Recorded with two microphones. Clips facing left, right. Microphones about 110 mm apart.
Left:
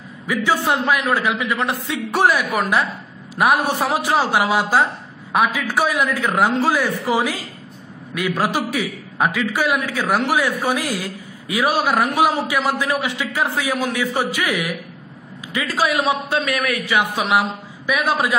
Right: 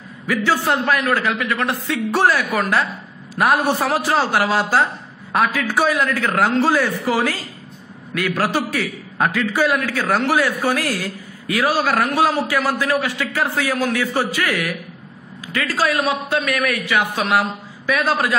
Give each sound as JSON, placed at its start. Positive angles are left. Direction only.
{"t": 0.3, "sound": "a man's voice", "side_deg": 15}
{"t": 6.9, "sound": "a man's voice", "side_deg": 20}